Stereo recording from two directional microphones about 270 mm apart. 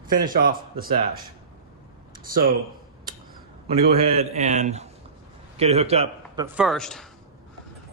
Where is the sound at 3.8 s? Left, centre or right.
Right.